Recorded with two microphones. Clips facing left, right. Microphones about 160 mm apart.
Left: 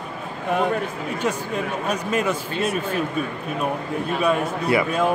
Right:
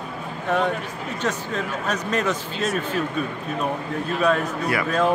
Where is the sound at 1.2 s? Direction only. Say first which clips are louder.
Left 1 dB; 10° left (ahead or behind).